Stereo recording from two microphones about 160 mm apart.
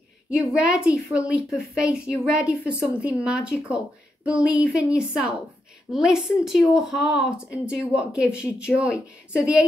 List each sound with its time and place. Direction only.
0.5 s a woman's voice: 5° right (ahead or behind)